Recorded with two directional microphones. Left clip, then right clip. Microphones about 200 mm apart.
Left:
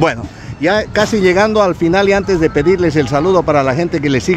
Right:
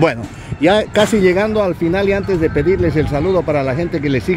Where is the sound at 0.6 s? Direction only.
20° right (ahead or behind).